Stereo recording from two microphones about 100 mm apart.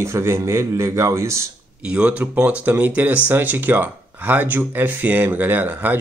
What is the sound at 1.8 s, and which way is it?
Speech, 10° right (ahead or behind).